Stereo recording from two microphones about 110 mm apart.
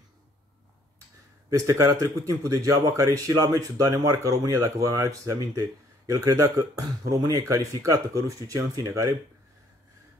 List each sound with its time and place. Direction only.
1.5 s speech: 30° right (ahead or behind)